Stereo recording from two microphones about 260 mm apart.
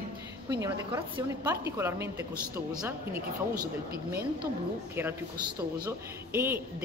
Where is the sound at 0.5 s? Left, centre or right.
Centre.